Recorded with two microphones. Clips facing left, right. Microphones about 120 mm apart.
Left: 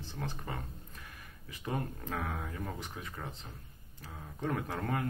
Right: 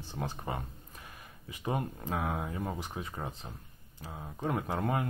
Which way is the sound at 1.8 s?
20° right (ahead or behind).